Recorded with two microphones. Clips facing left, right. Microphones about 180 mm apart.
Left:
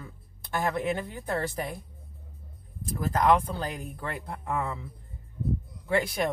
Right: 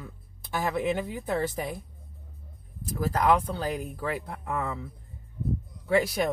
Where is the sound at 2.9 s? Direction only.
Centre (ahead or behind).